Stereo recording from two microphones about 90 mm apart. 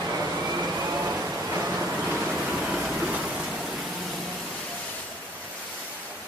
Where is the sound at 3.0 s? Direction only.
15° right (ahead or behind).